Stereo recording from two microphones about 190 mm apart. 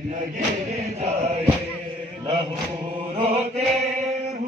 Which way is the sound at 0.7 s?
35° right (ahead or behind).